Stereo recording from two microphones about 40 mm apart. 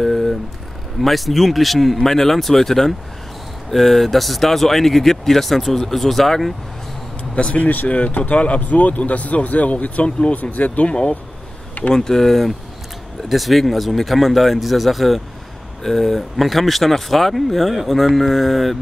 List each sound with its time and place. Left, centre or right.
0.0 s a sound: centre
1.0 s speech: centre
7.3 s speech: left
10.9 s speech: left
11.9 s speech: centre